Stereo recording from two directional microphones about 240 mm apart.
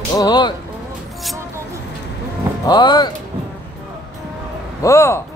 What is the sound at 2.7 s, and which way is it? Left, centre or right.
Speech, centre.